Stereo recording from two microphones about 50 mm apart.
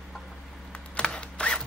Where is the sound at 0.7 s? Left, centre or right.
Left.